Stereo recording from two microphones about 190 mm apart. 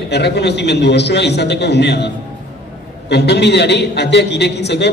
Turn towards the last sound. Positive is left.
turn(degrees=65)  # may be behind; listen again after turning